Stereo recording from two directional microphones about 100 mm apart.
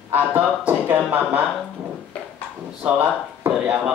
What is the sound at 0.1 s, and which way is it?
Speech, 15° right (ahead or behind).